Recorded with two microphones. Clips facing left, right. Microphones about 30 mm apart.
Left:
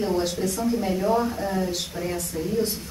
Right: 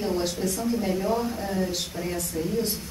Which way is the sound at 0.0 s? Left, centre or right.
Centre.